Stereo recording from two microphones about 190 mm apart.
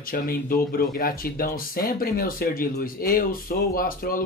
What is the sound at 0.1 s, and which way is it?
Speech, 50° left (ahead or behind).